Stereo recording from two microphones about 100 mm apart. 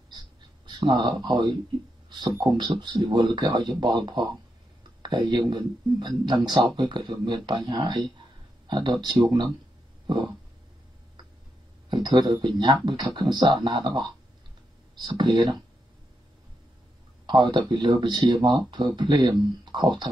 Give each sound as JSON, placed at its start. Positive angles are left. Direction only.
{"t": 0.7, "sound": "speech", "side_deg": -45}
{"t": 10.0, "sound": "throat clearing", "side_deg": -50}
{"t": 11.9, "sound": "speech", "side_deg": -45}
{"t": 17.3, "sound": "speech", "side_deg": -50}